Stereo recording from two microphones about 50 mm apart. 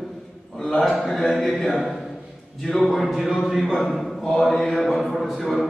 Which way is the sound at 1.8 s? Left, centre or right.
Centre.